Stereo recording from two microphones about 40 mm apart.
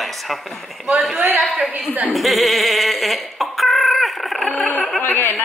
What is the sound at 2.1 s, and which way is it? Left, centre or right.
Chicken, centre.